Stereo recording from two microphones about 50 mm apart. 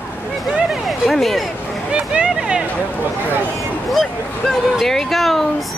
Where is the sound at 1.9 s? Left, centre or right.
Centre.